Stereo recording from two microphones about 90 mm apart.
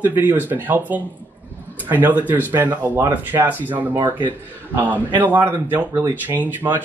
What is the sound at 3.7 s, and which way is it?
Speech, 60° right (ahead or behind).